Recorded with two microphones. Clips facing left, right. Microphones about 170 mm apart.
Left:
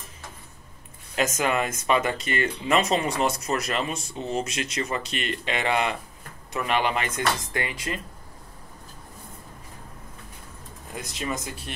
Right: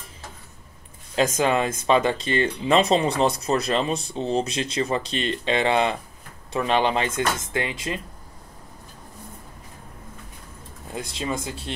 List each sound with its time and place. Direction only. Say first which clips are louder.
1.1 s speech: right 4 dB; 30° right (ahead or behind)
11.0 s speech: right 3 dB; 30° right (ahead or behind)